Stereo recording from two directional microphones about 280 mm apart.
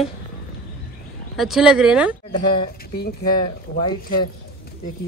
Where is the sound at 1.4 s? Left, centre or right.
Centre.